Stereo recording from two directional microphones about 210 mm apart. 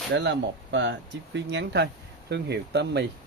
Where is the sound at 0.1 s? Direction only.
55° right (ahead or behind).